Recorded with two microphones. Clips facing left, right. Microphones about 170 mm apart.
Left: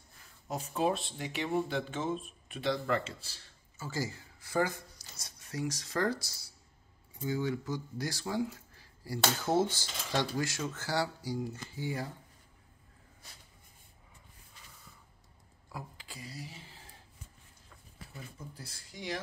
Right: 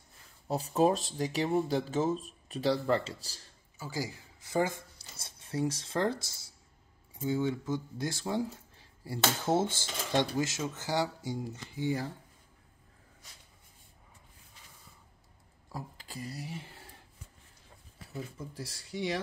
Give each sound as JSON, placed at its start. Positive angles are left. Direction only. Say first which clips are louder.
{"t": 0.5, "sound": "speech", "louder": "right 5 dB", "side_deg": -35}
{"t": 3.7, "sound": "speech", "louder": "even", "side_deg": -15}
{"t": 15.7, "sound": "speech", "louder": "right 3 dB", "side_deg": -40}